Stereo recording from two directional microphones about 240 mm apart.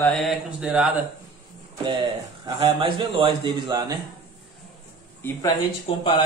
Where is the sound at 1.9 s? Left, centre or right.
Centre.